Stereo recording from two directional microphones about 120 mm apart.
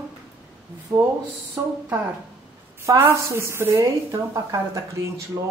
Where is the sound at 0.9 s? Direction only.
30° right (ahead or behind).